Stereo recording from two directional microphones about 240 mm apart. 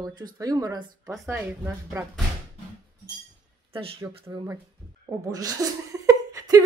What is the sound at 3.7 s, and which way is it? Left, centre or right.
Speech, right.